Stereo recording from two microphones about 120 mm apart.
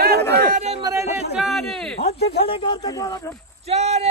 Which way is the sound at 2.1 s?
50° left (ahead or behind).